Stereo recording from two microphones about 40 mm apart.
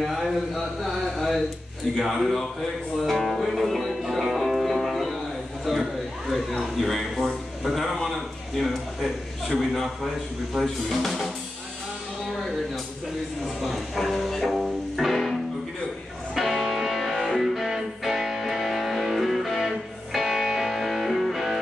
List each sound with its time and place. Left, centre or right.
1.1 s a sound: centre
2.0 s a man's voice: centre
4.0 s music: centre
5.7 s a sound: centre
6.6 s a man's voice: centre
13.6 s music: centre
16.3 s music: centre